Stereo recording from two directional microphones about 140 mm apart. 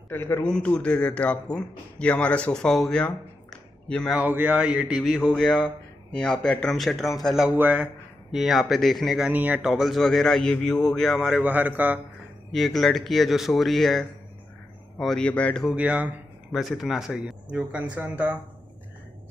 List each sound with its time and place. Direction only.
0.1 s a man's voice: 15° left (ahead or behind)
4.2 s a man's voice: 10° right (ahead or behind)
7.3 s a man's voice: 10° right (ahead or behind)
9.3 s a man's voice: 10° right (ahead or behind)
12.5 s a man's voice: centre (ahead or behind)
15.7 s speech: 10° right (ahead or behind)